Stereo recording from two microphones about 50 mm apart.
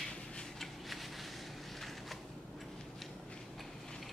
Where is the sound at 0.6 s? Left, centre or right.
Centre.